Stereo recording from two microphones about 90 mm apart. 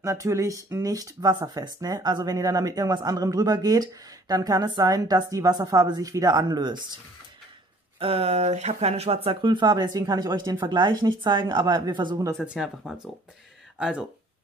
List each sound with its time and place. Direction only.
0.0 s speech: 35° right (ahead or behind)
8.0 s speech: 90° right; by 12.2 s 60° right (ahead or behind)
12.4 s speech: 5° right (ahead or behind)